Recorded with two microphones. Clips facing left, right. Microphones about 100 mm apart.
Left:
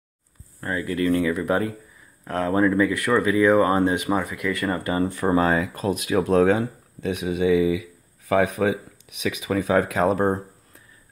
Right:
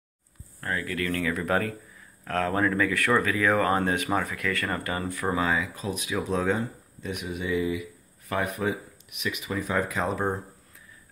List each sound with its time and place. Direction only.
0.6 s speech: 20° left (ahead or behind)
5.4 s a man's voice: 50° left (ahead or behind); by 10.1 s 70° left (ahead or behind)
10.1 s speech: 45° left (ahead or behind)